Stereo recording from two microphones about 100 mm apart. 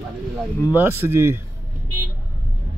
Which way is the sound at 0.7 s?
20° right (ahead or behind).